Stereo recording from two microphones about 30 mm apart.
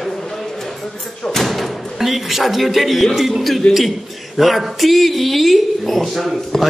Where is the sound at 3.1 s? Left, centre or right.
Centre.